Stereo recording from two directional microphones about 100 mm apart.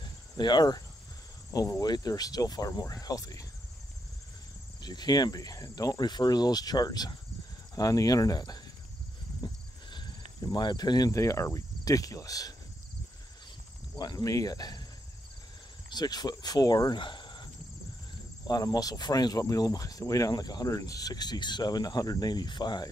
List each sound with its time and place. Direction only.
0.0 s cricket: 45° left (ahead or behind)
1.5 s speech: 35° left (ahead or behind)
4.8 s speech: 45° left (ahead or behind)
13.9 s speech: 40° left (ahead or behind)
15.9 s speech: 45° left (ahead or behind)
18.5 s speech: 40° left (ahead or behind)